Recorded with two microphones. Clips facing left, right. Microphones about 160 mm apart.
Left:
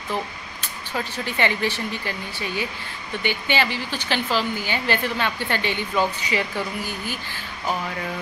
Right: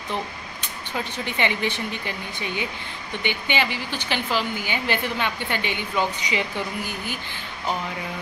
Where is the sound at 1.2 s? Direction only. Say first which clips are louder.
Left 2 dB; 20° right (ahead or behind).